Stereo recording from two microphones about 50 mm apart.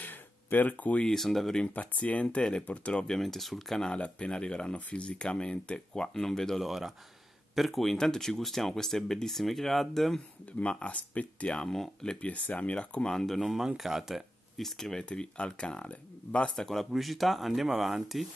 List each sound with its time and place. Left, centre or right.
0.0 s a sound: left
1.0 s speech: centre
1.7 s speech: left
2.2 s speech: centre
3.2 s speech: centre
3.8 s speech: centre
10.4 s speech: left
11.7 s speech: centre
12.2 s speech: left; by 13.4 s centre
13.4 s speech: centre
14.6 s speech: centre
15.0 s speech: left
16.9 s speech: centre